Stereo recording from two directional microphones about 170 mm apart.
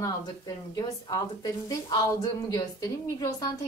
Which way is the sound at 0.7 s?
20° left (ahead or behind).